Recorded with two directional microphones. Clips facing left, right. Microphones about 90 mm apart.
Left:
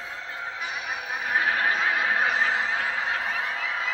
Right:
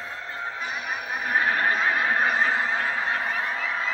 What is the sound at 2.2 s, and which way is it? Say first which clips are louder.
Snicker: right 1 dB; 40° right (ahead or behind).